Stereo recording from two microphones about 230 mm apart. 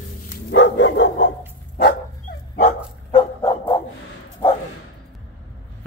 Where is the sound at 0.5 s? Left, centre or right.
Left.